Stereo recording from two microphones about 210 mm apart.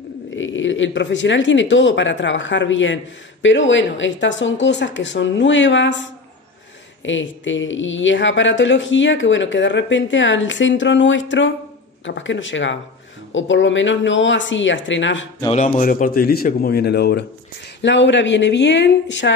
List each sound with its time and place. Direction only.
0.4 s speech: 65° left (ahead or behind)
7.1 s speech: 65° left (ahead or behind)
15.5 s speech: 35° left (ahead or behind); by 19.3 s 60° left (ahead or behind)